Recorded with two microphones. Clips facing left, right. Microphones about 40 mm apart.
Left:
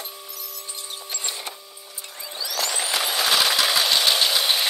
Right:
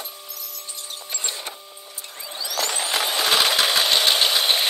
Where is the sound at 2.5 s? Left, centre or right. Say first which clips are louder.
Right 1 dB; right.